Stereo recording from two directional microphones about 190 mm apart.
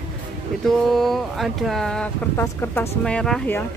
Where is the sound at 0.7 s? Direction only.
Centre (ahead or behind).